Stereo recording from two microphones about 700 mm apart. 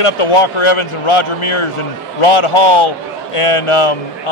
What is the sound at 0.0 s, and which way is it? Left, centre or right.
A man's voice, left.